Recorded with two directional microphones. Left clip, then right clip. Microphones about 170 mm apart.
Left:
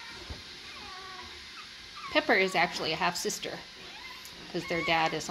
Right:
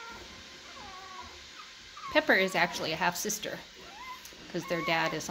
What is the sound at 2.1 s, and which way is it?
Speech, 15° right (ahead or behind).